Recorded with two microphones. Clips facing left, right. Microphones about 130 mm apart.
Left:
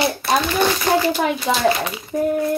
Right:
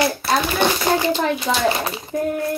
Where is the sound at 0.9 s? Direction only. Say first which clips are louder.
Left 3 dB; 15° right (ahead or behind).